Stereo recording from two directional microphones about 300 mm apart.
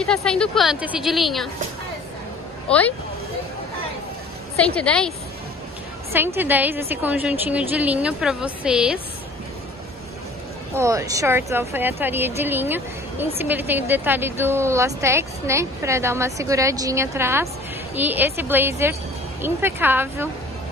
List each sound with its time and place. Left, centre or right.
0.0 s a woman's voice: centre
2.7 s a woman's voice: centre
4.6 s a woman's voice: centre
6.1 s a woman's voice: centre
10.8 s a woman's voice: centre